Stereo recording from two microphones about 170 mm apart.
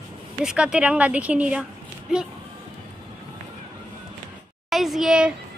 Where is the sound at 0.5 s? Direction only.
5° right (ahead or behind).